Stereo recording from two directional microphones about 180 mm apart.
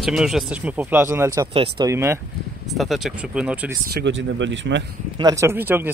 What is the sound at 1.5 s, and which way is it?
Speech, 20° right (ahead or behind).